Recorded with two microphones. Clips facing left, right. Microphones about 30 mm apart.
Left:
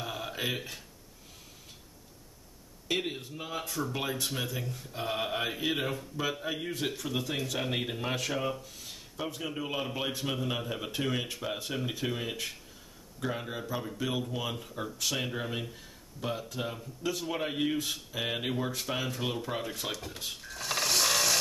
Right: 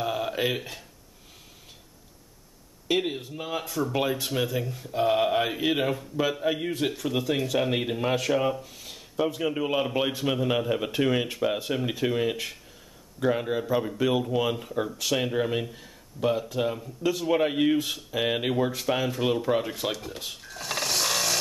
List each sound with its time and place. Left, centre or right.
0.0 s a sound: centre
2.9 s speech: centre
15.0 s speech: centre